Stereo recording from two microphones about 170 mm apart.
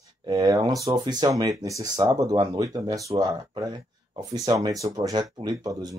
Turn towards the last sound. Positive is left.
turn(degrees=-25)  # may be behind; listen again after turning